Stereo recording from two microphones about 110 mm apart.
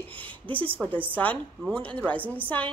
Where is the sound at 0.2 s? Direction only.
15° left (ahead or behind).